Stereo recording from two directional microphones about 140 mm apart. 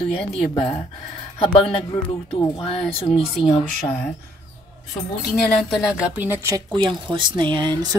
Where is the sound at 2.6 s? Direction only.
45° left (ahead or behind).